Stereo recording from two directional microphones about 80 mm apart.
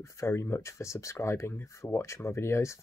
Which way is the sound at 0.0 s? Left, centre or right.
Left.